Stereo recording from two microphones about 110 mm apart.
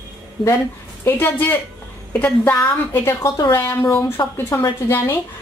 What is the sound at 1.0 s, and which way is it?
A woman's voice, 15° left (ahead or behind).